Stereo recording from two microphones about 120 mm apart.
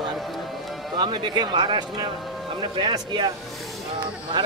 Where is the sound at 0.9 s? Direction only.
40° right (ahead or behind).